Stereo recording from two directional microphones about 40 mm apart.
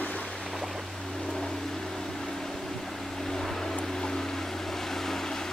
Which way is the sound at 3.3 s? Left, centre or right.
Centre.